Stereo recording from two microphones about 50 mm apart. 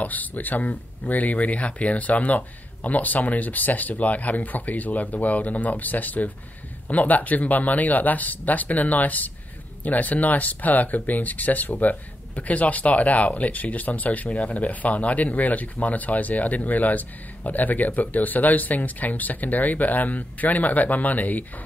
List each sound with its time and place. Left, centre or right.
0.0 s speech: left